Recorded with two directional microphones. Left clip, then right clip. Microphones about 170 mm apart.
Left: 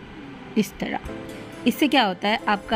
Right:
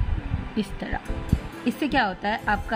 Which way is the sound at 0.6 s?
15° left (ahead or behind).